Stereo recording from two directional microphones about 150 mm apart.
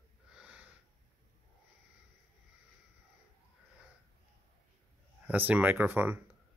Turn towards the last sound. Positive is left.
turn(degrees=-15)  # may be behind; listen again after turning